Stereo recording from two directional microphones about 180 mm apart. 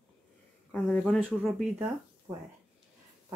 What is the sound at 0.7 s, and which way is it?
Speech, 5° left (ahead or behind).